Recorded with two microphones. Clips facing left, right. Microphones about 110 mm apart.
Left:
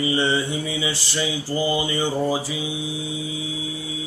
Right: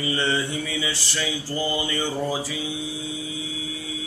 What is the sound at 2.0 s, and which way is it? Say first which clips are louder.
Music: left 4 dB; 20° left (ahead or behind).